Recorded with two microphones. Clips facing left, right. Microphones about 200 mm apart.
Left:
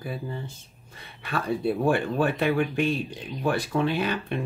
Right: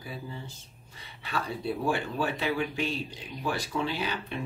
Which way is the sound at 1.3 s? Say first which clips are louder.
Left 6 dB; 55° left (ahead or behind).